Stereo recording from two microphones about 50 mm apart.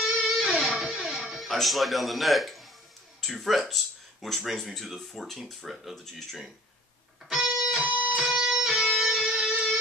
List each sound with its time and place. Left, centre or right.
0.0 s guitar: centre
0.5 s music: centre
1.3 s speech: centre
7.2 s music: centre
7.8 s music: right
8.3 s music: centre